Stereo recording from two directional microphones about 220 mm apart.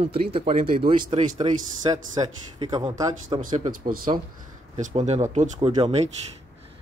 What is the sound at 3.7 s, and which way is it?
Speech, 40° right (ahead or behind).